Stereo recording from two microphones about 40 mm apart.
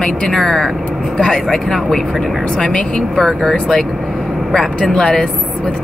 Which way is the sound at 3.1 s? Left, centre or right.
Centre.